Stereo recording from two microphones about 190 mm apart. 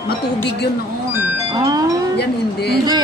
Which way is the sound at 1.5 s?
20° right (ahead or behind).